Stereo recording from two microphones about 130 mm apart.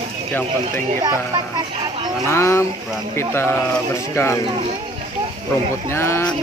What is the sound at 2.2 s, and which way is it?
Speech, 20° left (ahead or behind).